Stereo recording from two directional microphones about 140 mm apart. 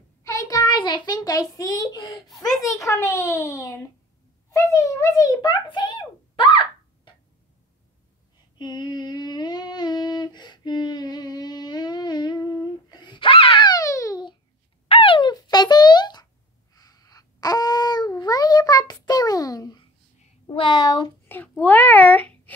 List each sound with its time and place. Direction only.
0.2 s a child's voice: 25° left (ahead or behind)
8.5 s humming: 30° left (ahead or behind)
12.9 s a sound: 35° left (ahead or behind)
14.9 s a sound: 40° left (ahead or behind)
20.4 s speech: 35° left (ahead or behind)
21.3 s a child's voice: 15° left (ahead or behind)